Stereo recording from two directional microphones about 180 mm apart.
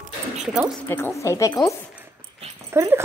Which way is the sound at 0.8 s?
15° left (ahead or behind).